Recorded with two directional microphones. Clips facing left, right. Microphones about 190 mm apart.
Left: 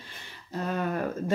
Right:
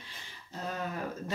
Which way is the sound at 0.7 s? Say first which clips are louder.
Left 8 dB; 60° left (ahead or behind).